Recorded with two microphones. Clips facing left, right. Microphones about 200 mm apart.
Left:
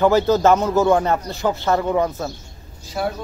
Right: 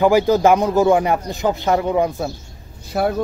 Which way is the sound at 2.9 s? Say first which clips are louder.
Right 4 dB; 60° right (ahead or behind).